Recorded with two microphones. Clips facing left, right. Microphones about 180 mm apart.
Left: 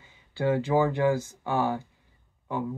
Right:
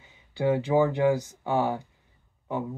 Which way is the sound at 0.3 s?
15° right (ahead or behind).